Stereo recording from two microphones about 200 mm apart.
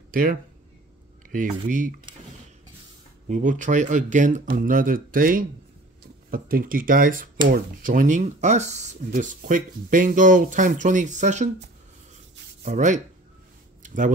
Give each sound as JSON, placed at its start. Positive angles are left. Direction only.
{"t": 0.1, "sound": "speech", "side_deg": -45}
{"t": 3.3, "sound": "speech", "side_deg": -40}
{"t": 12.6, "sound": "speech", "side_deg": -40}